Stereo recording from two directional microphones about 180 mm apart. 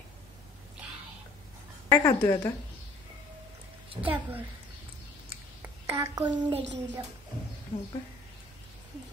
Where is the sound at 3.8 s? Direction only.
30° right (ahead or behind).